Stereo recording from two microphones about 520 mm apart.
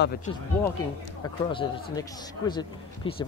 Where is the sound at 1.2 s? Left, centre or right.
Centre.